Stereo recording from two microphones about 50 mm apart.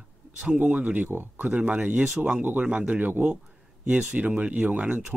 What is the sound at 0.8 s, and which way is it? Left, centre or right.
A man's voice, right.